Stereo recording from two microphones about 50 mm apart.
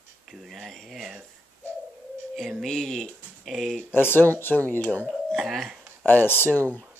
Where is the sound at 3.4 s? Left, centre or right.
Centre.